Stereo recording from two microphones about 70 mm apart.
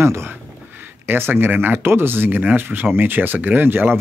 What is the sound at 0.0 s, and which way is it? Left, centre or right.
Speech, right.